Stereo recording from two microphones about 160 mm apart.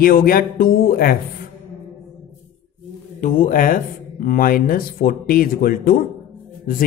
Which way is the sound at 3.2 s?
55° left (ahead or behind).